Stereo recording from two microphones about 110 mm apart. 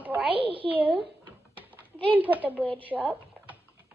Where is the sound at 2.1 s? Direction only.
15° right (ahead or behind).